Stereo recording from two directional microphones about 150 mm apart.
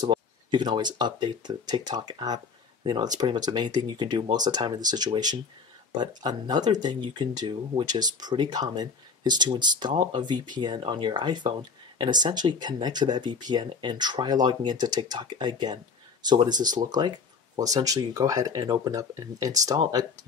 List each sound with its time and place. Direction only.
0.0 s speech: 30° right (ahead or behind)